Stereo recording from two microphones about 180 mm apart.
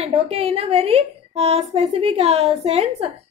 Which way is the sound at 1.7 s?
35° right (ahead or behind).